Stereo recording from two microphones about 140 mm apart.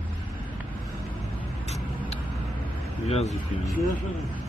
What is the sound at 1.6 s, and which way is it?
Vehicle, 50° left (ahead or behind).